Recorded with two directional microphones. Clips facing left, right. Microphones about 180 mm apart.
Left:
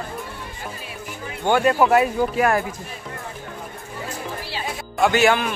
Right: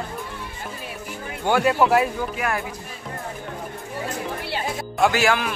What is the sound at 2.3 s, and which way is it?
Speech, 45° left (ahead or behind).